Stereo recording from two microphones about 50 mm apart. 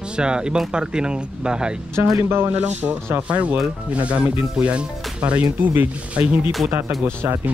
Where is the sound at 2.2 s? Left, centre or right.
Right.